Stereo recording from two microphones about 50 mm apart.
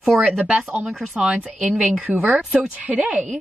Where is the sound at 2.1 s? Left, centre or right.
Right.